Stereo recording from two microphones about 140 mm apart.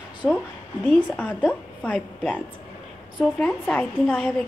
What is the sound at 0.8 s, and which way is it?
Speech, 10° left (ahead or behind).